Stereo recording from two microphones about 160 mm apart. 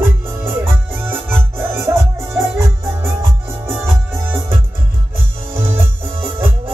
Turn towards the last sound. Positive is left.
turn(degrees=-15)  # may be behind; listen again after turning